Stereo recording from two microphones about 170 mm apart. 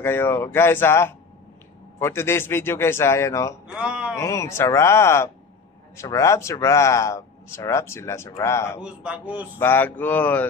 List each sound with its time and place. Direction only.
0.0 s a man's voice: 15° left (ahead or behind)
3.6 s speech: 5° right (ahead or behind)
4.1 s a man's voice: 15° left (ahead or behind)
8.8 s a man's voice: 5° right (ahead or behind)
9.6 s a man's voice: 10° left (ahead or behind)